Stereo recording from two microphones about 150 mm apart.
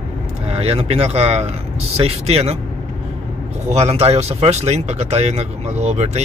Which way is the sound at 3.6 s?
45° right (ahead or behind).